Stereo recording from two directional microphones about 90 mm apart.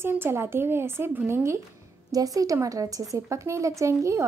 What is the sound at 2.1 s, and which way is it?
A woman's voice, 40° right (ahead or behind).